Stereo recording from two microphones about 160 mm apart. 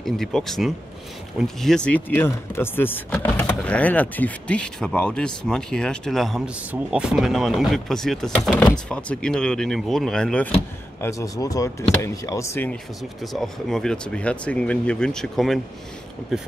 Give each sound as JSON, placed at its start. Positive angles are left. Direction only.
{"t": 0.0, "sound": "speech", "side_deg": 0}
{"t": 11.0, "sound": "speech", "side_deg": 20}
{"t": 13.2, "sound": "speech", "side_deg": 0}